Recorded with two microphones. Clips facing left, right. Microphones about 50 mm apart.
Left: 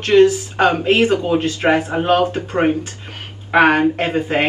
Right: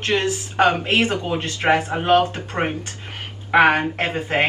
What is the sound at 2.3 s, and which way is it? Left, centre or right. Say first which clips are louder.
Speech: left 7 dB; left.